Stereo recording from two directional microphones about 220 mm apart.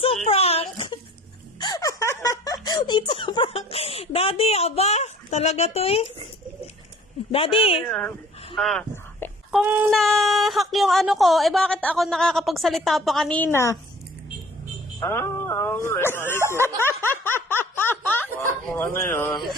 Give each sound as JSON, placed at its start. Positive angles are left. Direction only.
{"t": 0.0, "sound": "a sound", "side_deg": 25}
{"t": 7.3, "sound": "speech", "side_deg": 25}
{"t": 7.8, "sound": "a woman's voice", "side_deg": 5}
{"t": 8.5, "sound": "a sound", "side_deg": 5}
{"t": 9.5, "sound": "a woman's voice", "side_deg": -5}
{"t": 15.0, "sound": "speech", "side_deg": 10}
{"t": 17.1, "sound": "snicker", "side_deg": 10}
{"t": 18.9, "sound": "speech", "side_deg": 10}